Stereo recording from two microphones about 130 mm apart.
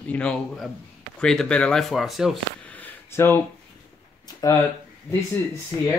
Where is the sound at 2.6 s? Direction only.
10° left (ahead or behind).